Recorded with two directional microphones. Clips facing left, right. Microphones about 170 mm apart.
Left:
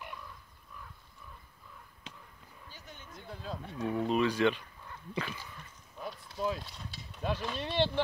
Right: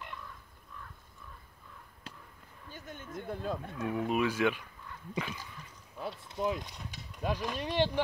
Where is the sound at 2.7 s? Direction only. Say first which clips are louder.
Right 7 dB; 50° right (ahead or behind).